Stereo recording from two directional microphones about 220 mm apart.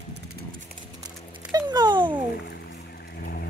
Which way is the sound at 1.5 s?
20° right (ahead or behind).